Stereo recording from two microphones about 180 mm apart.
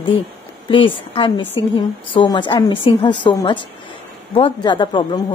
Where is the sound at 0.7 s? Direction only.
30° left (ahead or behind).